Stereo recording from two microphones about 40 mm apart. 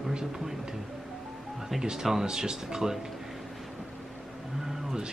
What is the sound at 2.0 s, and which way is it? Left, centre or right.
Speech, centre.